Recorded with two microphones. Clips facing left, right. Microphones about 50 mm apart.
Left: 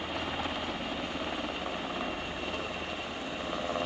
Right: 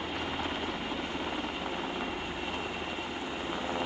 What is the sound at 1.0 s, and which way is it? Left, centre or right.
Vehicle, centre.